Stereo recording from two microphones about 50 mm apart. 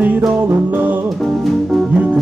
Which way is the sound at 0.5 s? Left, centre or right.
Right.